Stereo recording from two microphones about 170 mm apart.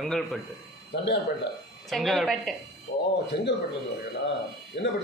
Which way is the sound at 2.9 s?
50° left (ahead or behind).